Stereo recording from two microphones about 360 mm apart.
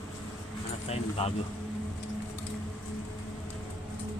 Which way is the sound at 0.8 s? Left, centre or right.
Centre.